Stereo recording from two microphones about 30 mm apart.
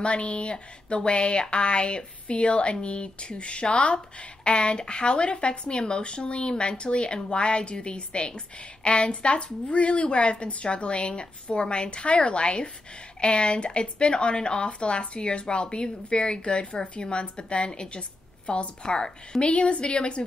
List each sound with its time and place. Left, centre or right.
0.0 s a woman's voice: left
19.4 s speech: left